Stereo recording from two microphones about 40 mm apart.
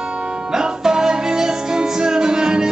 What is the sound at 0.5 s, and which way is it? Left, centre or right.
Music, centre.